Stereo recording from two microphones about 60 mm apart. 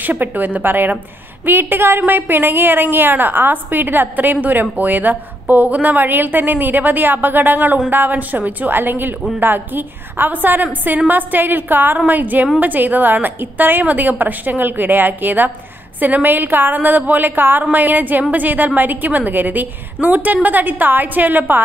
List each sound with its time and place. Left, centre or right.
0.0 s a woman's voice: right